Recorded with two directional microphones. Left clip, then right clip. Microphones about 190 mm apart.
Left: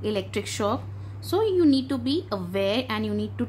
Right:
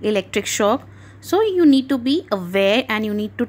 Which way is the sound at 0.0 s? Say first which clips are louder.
Right 8 dB; 35° right (ahead or behind).